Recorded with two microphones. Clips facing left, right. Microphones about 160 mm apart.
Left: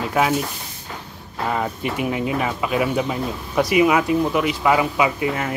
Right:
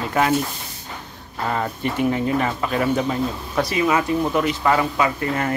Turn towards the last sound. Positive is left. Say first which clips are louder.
# even
turn(degrees=5)  # may be behind; listen again after turning